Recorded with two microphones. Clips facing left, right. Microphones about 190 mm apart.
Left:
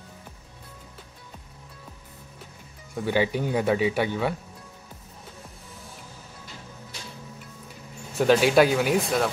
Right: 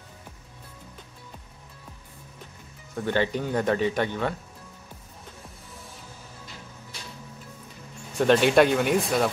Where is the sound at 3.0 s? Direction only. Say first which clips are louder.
Left 1 dB; 10° left (ahead or behind).